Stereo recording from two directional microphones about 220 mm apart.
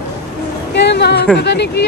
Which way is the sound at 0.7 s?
50° left (ahead or behind).